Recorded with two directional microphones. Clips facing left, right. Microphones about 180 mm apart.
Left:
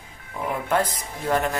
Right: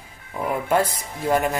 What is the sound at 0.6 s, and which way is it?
Speech, 10° right (ahead or behind).